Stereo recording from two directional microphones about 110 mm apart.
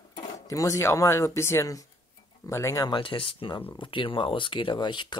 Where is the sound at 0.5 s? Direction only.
30° left (ahead or behind).